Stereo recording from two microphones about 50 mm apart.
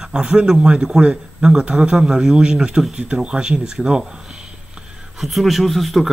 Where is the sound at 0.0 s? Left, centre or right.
Centre.